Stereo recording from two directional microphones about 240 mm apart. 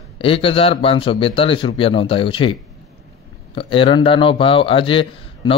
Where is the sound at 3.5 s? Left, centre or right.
Left.